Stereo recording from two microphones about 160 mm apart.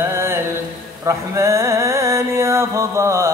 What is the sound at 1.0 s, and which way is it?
Music, 20° right (ahead or behind).